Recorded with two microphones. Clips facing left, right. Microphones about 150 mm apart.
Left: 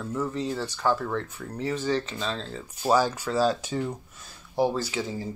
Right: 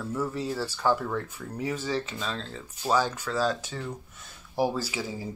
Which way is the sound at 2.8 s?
10° left (ahead or behind).